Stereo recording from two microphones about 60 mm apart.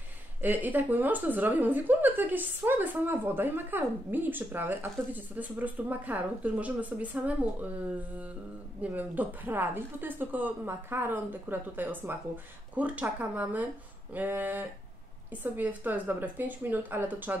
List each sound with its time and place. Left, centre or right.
0.4 s a woman's voice: right
8.9 s a woman's voice: right